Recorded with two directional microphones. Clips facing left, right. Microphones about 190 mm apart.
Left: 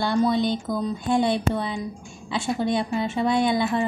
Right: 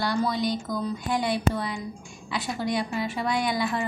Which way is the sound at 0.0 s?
25° left (ahead or behind).